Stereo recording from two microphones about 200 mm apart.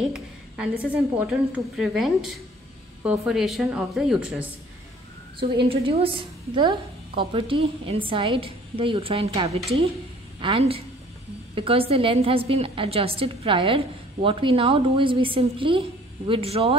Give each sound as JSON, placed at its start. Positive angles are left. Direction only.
{"t": 0.1, "sound": "a sound", "side_deg": -5}
{"t": 1.1, "sound": "speech", "side_deg": -5}
{"t": 5.7, "sound": "a woman's voice", "side_deg": -30}